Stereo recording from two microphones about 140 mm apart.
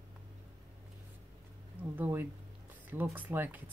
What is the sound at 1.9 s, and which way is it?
Speech, 15° right (ahead or behind).